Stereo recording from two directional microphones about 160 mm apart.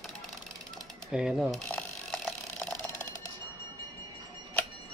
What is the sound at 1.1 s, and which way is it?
Mechanisms, 5° right (ahead or behind).